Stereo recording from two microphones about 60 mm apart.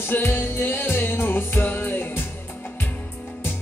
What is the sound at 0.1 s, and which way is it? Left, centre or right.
Music, left.